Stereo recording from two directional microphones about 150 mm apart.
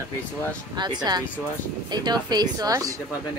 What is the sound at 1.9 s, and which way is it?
Speech, 30° right (ahead or behind).